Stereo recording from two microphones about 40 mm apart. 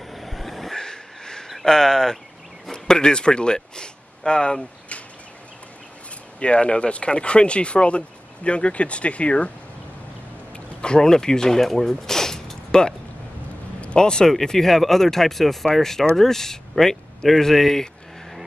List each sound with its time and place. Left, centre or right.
0.1 s vehicle: centre
0.7 s a sound: centre
1.5 s speech: centre
6.4 s speech: left
10.8 s speech: centre